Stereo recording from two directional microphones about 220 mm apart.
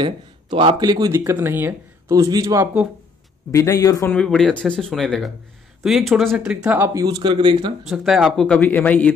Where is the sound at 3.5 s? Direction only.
15° left (ahead or behind).